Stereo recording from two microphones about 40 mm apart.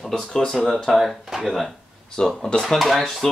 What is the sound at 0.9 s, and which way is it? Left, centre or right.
Speech, centre.